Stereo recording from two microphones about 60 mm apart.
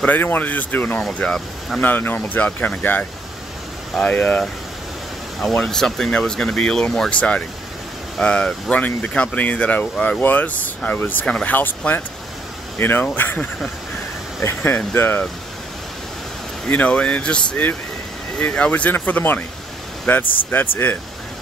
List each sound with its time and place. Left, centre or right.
0.0 s speech: left
1.1 s speech: centre
1.8 s speech: left
5.5 s speech: centre; by 11.2 s left
11.2 s speech: centre
12.7 s speech: left
14.4 s speech: left
16.6 s speech: left